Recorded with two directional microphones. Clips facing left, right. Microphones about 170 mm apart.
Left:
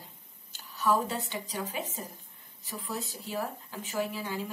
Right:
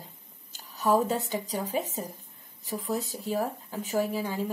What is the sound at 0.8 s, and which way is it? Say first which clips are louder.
Speech: right 4 dB; 45° right (ahead or behind).